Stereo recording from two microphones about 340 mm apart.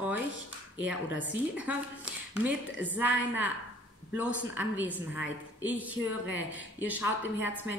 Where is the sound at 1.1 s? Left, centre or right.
Left.